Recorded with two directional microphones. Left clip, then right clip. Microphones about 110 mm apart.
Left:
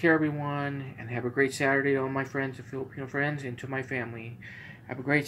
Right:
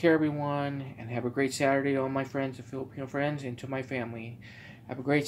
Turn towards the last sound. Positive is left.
turn(degrees=-25)  # may be behind; listen again after turning